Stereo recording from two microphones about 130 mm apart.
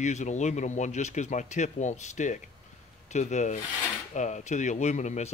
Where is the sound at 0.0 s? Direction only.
65° left (ahead or behind).